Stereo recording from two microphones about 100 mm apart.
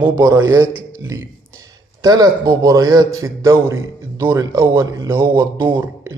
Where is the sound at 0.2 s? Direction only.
30° right (ahead or behind).